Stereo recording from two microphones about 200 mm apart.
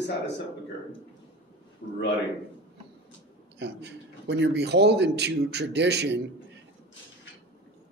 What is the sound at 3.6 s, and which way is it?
A man's voice, 60° right (ahead or behind).